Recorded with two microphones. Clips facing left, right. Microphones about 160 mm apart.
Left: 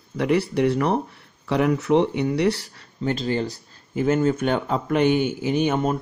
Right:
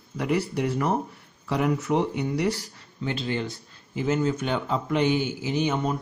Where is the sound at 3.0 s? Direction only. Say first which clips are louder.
Left 5 dB; 40° left (ahead or behind).